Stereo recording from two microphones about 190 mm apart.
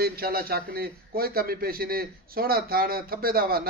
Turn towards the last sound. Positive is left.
turn(degrees=-50)  # may be behind; listen again after turning